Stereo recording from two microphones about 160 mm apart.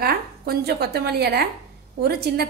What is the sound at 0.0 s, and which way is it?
A woman's voice, 75° right (ahead or behind).